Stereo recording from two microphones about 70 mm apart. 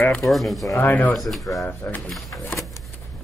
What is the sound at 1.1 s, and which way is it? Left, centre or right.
Speech, centre.